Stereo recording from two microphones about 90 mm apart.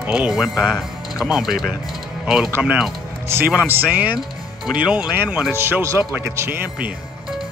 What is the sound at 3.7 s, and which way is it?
A man's voice, 20° right (ahead or behind).